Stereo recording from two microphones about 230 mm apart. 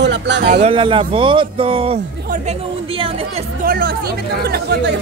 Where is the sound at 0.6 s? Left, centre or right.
Right.